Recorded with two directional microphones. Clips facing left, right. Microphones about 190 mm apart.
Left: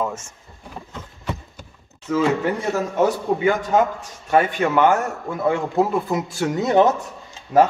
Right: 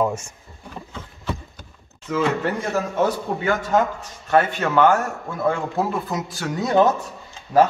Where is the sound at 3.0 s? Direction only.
15° left (ahead or behind).